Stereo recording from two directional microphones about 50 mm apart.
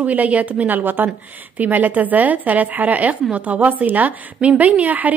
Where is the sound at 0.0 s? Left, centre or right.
Right.